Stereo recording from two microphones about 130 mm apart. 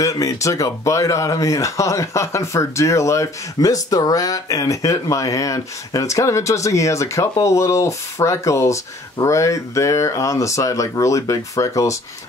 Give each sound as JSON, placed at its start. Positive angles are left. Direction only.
{"t": 0.0, "sound": "speech", "side_deg": 25}